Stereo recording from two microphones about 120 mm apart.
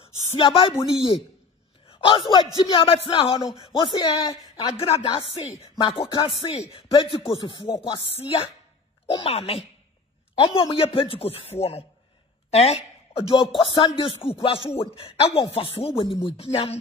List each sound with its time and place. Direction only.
0.0 s speech: 50° left (ahead or behind)
1.9 s music: 50° left (ahead or behind)
3.7 s speech: 35° left (ahead or behind)
4.7 s music: 55° left (ahead or behind)
8.2 s chopping: 55° left (ahead or behind)
9.1 s music: 50° left (ahead or behind)
12.4 s speech: 60° left (ahead or behind)
13.6 s music: 45° left (ahead or behind)
15.5 s chopping: 55° left (ahead or behind)
16.0 s music: 50° left (ahead or behind)